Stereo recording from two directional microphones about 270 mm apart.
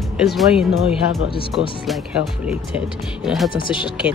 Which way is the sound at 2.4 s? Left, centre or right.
Centre.